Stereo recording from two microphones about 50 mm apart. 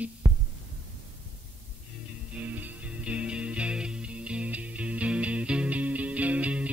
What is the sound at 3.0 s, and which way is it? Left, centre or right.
Music, right.